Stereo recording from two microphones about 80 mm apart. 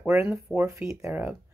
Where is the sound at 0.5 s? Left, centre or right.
Right.